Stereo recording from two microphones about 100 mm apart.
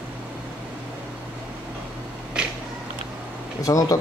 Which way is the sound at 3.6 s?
35° left (ahead or behind).